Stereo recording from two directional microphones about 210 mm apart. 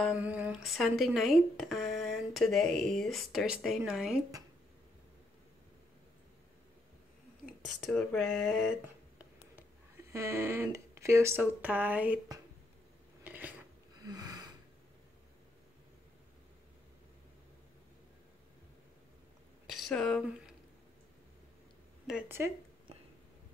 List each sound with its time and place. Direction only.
0.0 s speech: 5° right (ahead or behind)
7.4 s speech: centre (ahead or behind)
10.1 s speech: 15° right (ahead or behind)
13.2 s a sound: 10° right (ahead or behind)
14.0 s snort: 20° right (ahead or behind)
19.6 s a sound: centre (ahead or behind)
22.0 s speech: 5° right (ahead or behind)